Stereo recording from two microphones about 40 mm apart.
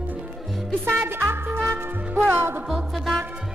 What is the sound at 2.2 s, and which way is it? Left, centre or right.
Music, right.